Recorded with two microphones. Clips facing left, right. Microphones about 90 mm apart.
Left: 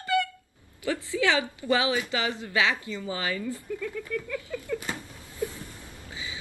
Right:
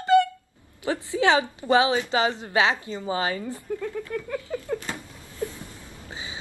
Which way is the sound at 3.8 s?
45° right (ahead or behind).